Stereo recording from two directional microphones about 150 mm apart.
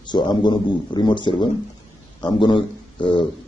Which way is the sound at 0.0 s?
30° left (ahead or behind).